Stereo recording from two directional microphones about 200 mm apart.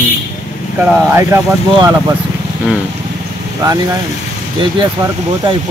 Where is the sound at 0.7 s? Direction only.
15° right (ahead or behind).